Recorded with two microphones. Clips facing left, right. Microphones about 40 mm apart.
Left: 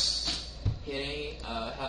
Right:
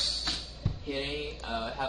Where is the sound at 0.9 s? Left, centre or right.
Centre.